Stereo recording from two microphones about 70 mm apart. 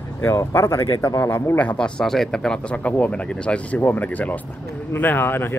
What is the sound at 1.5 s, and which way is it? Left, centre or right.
Speech, left.